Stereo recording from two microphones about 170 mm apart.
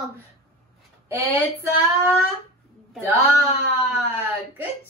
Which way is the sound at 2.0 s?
10° right (ahead or behind).